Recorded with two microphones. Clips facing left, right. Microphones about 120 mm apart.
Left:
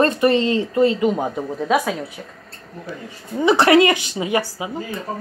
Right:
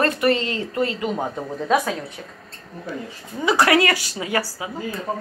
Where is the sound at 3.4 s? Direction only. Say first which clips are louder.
Left 4 dB; 25° left (ahead or behind).